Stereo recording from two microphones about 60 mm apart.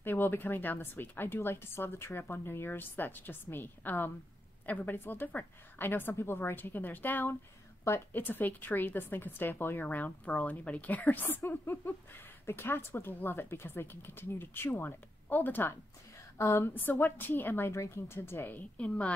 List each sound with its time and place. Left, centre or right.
0.0 s a woman's voice: left
9.8 s a woman's voice: left
16.3 s speech: left
16.7 s a woman's voice: left
17.7 s a woman's voice: left
18.8 s a woman's voice: left